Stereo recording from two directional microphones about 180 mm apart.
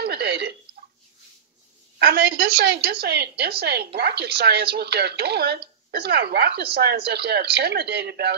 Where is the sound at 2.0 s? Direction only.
65° right (ahead or behind).